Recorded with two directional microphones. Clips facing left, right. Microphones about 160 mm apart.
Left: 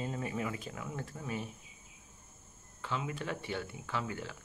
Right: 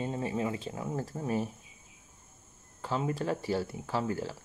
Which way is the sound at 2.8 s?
40° right (ahead or behind).